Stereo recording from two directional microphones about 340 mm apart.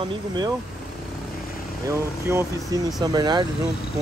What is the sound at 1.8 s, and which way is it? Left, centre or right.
Speech, centre.